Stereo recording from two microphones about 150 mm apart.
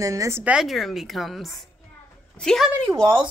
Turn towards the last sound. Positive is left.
turn(degrees=-25)  # may be behind; listen again after turning